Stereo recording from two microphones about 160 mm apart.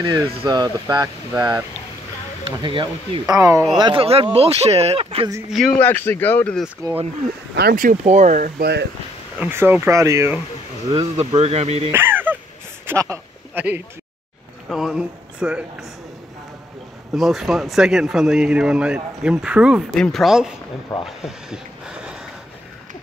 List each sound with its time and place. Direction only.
0.0 s speech: 25° right (ahead or behind)
2.6 s speech: 30° right (ahead or behind)
5.5 s speech: centre (ahead or behind)
7.5 s speech: 80° right
7.8 s speech: 50° right (ahead or behind)
8.5 s speech: 90° right
9.4 s speech: 15° right (ahead or behind)
11.1 s speech: 40° right (ahead or behind)
11.9 s a sound: 15° right (ahead or behind)
14.7 s speech: centre (ahead or behind)
17.1 s a man's voice: centre (ahead or behind)
20.9 s speech: 25° left (ahead or behind)
21.3 s a sound: 5° right (ahead or behind)